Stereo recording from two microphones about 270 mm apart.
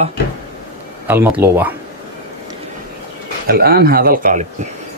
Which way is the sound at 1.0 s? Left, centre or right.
Centre.